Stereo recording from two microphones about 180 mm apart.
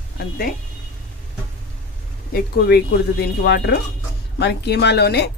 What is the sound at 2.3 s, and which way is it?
Speech, 65° left (ahead or behind).